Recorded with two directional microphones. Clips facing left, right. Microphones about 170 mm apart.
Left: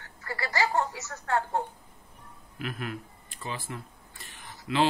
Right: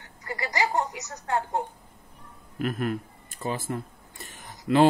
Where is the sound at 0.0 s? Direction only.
15° right (ahead or behind).